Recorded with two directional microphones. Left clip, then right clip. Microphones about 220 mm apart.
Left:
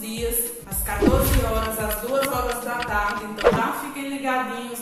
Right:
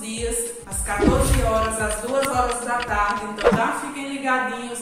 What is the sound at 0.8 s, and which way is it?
Music, centre (ahead or behind).